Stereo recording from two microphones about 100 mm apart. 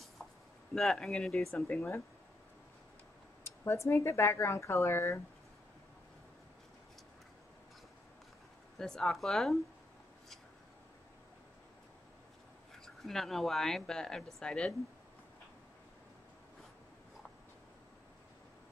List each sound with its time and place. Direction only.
0.2 s a sound: 5° left (ahead or behind)
0.7 s a woman's voice: 5° left (ahead or behind)
1.7 s speech: 20° left (ahead or behind)
3.4 s speech: 25° left (ahead or behind)
8.7 s a woman's voice: 5° left (ahead or behind)
12.8 s a woman's voice: 5° left (ahead or behind)